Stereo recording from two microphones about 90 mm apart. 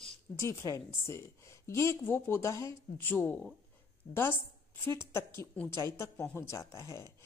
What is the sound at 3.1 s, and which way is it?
A woman's voice, 20° left (ahead or behind).